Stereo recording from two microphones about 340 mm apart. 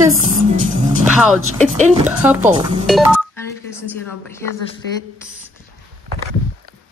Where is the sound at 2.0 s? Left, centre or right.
Centre.